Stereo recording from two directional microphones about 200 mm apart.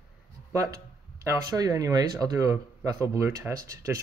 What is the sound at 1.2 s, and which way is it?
Speech, 15° right (ahead or behind).